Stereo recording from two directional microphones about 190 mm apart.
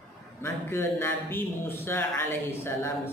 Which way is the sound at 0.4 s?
10° left (ahead or behind).